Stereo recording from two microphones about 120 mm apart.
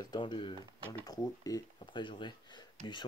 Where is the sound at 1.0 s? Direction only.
30° left (ahead or behind).